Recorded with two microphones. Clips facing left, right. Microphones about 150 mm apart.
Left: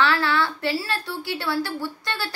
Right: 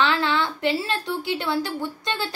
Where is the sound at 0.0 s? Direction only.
20° right (ahead or behind).